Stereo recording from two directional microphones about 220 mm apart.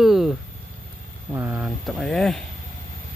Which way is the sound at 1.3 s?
10° right (ahead or behind).